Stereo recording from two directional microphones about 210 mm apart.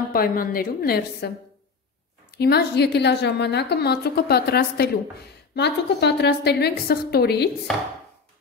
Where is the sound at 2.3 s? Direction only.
50° left (ahead or behind).